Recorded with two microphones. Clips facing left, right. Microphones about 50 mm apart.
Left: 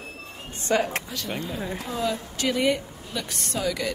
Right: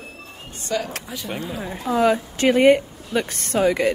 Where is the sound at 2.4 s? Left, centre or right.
Right.